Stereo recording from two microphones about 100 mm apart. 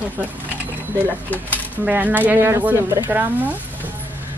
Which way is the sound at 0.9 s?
15° left (ahead or behind).